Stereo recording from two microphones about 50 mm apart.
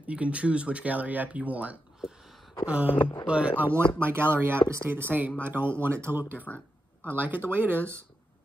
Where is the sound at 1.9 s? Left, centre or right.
Centre.